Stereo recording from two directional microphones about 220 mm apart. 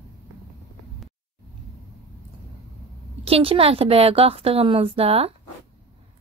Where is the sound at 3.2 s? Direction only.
25° right (ahead or behind).